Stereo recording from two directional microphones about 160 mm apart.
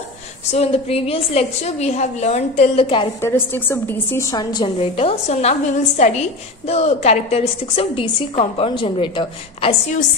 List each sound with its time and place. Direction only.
0.5 s a woman's voice: 40° left (ahead or behind)
3.2 s a woman's voice: 15° left (ahead or behind); by 9.8 s 35° left (ahead or behind)